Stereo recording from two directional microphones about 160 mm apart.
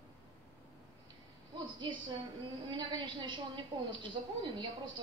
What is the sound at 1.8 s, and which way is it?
A woman's voice, 30° right (ahead or behind).